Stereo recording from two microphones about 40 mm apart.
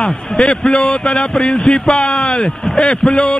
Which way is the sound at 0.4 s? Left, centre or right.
Left.